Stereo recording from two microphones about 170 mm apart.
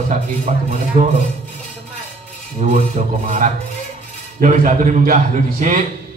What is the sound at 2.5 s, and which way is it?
A man's voice, 45° right (ahead or behind).